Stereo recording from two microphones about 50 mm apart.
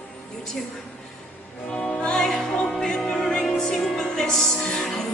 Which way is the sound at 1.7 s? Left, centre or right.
Centre.